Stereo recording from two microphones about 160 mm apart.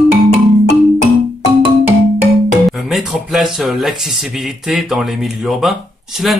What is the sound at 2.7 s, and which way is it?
Speech, centre (ahead or behind).